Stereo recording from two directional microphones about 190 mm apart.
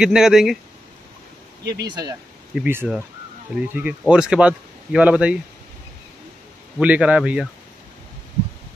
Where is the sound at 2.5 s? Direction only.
10° right (ahead or behind).